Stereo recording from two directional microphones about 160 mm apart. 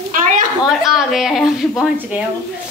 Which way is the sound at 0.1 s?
55° right (ahead or behind).